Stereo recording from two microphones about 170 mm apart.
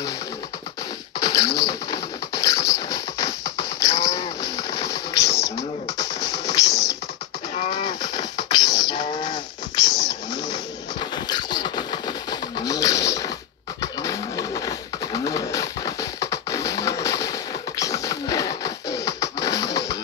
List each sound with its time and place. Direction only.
1.2 s pigeon: 20° left (ahead or behind)
7.5 s a sound: 35° left (ahead or behind)
7.8 s livestock: 25° left (ahead or behind)
13.7 s pigeon: 20° left (ahead or behind)